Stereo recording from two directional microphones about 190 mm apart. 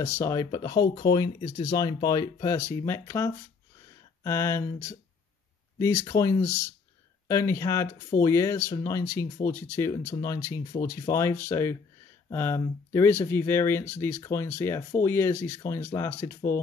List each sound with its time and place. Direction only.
0.0 s speech: 15° left (ahead or behind)